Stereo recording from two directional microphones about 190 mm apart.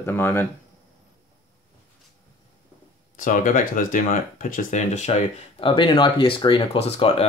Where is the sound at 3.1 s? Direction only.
45° left (ahead or behind).